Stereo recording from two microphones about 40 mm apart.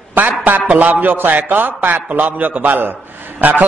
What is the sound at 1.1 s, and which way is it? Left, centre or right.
Speech, right.